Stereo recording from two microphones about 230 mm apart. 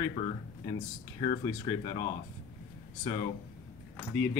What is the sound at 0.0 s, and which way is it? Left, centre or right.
Speech, left.